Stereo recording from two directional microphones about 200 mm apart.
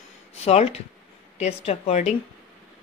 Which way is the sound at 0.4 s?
30° left (ahead or behind).